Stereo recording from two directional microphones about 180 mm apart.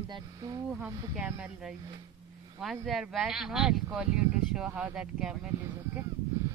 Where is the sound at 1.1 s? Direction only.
5° right (ahead or behind).